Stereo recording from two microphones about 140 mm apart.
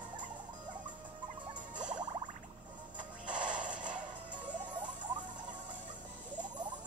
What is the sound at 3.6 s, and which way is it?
Music, 65° right (ahead or behind).